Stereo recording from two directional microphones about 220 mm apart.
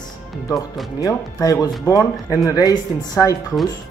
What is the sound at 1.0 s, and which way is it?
Speech, 15° left (ahead or behind).